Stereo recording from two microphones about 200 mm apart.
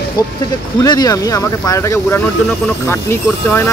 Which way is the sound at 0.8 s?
20° left (ahead or behind).